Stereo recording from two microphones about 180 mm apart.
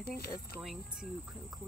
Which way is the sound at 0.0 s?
60° left (ahead or behind).